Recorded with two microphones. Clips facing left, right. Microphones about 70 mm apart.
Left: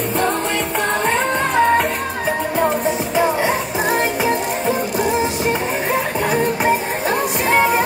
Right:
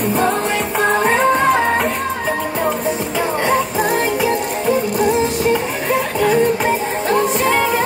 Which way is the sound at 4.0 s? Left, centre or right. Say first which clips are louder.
Even; left.